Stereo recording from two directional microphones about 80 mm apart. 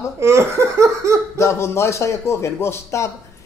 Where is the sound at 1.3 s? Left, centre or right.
Left.